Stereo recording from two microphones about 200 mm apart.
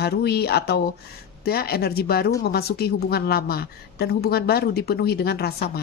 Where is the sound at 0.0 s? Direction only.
55° left (ahead or behind).